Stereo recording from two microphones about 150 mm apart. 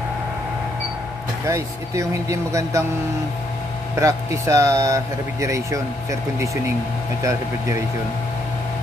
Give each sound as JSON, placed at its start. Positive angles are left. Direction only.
{"t": 1.4, "sound": "speech", "side_deg": -20}
{"t": 3.9, "sound": "speech", "side_deg": -20}
{"t": 7.2, "sound": "speech", "side_deg": -20}